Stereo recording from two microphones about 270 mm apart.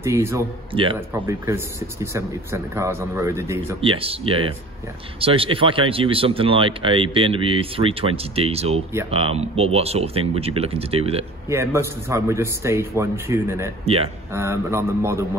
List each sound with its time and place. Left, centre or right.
0.0 s a man's voice: centre
3.8 s speech: centre
11.4 s a man's voice: centre
13.8 s speech: right
14.3 s a man's voice: centre